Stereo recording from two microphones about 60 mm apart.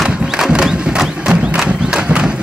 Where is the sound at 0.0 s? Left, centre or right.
Centre.